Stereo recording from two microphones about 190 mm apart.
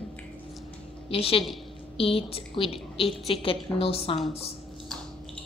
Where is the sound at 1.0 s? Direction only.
30° left (ahead or behind).